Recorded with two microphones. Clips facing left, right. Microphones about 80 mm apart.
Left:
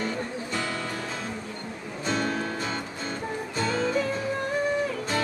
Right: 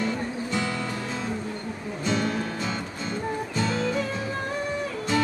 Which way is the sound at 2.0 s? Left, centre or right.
Left.